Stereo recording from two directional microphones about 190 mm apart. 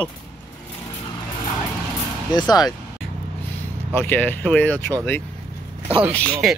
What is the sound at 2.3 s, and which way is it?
Speech, 20° left (ahead or behind).